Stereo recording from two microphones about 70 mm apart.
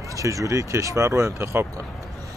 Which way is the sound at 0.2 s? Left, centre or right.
Right.